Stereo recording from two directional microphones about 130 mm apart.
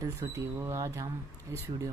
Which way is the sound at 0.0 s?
20° right (ahead or behind).